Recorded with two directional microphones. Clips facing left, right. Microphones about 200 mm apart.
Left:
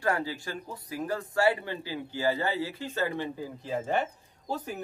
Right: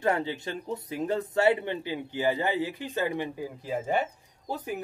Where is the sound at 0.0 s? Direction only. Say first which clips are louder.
Right 2 dB; 20° right (ahead or behind).